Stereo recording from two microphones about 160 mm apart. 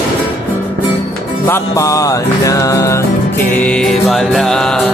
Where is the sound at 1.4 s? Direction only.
15° left (ahead or behind).